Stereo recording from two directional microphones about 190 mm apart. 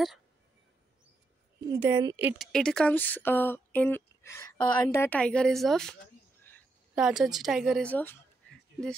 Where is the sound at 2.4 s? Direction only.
5° left (ahead or behind).